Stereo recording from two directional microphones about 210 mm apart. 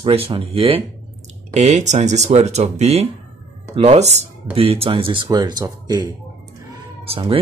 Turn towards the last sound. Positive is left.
turn(degrees=-25)  # may be behind; listen again after turning